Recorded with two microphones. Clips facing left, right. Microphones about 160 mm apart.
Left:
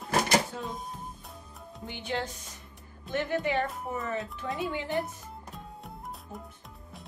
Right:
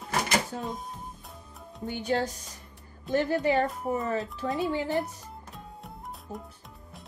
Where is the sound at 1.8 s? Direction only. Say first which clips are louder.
Right 6 dB; 45° right (ahead or behind).